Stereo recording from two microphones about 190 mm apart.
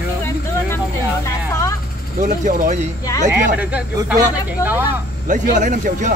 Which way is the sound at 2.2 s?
40° right (ahead or behind).